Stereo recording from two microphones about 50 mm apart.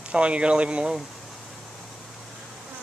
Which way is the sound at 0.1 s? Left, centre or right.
Right.